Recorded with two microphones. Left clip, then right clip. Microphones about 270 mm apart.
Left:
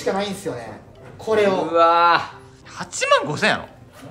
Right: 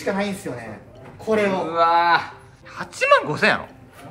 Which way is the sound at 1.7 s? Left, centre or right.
Left.